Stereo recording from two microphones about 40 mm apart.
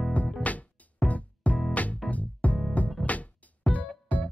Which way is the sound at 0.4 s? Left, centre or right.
Left.